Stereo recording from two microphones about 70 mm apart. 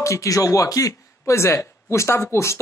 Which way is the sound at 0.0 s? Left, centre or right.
Left.